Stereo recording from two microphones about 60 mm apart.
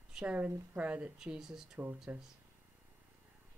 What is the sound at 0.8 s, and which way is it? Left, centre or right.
Speech, right.